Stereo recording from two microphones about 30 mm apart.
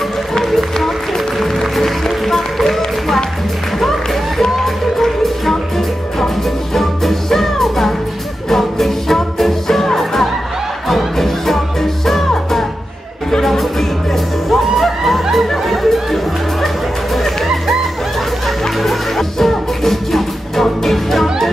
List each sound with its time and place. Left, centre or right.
1.4 s music: centre
18.8 s music: centre